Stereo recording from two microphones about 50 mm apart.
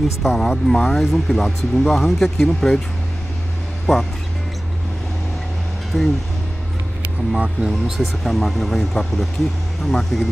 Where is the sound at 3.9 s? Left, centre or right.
Centre.